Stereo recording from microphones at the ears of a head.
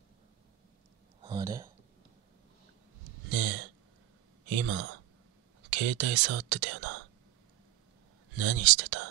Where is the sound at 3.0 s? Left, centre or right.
Right.